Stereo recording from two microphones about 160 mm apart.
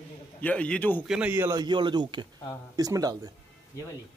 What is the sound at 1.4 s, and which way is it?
Speech, 25° right (ahead or behind).